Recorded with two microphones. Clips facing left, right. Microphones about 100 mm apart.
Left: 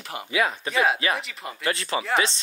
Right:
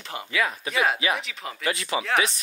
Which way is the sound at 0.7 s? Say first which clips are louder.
Even; centre (ahead or behind).